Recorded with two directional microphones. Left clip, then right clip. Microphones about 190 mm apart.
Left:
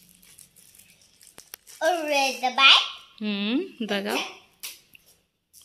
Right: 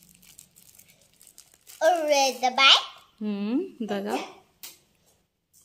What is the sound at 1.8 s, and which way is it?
A child's voice, 20° right (ahead or behind).